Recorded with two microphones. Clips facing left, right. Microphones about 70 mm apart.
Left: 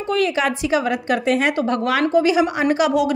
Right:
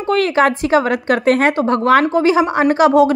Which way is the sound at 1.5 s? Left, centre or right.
Right.